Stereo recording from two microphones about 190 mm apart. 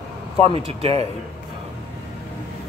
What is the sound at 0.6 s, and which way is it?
Speech, 30° right (ahead or behind).